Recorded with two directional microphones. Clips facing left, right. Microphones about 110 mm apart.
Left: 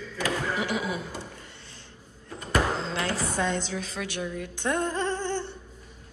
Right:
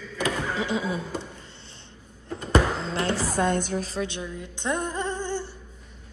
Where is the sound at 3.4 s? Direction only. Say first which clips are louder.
Right 5 dB; 50° right (ahead or behind).